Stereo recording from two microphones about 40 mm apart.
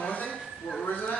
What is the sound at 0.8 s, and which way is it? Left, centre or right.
Speech, left.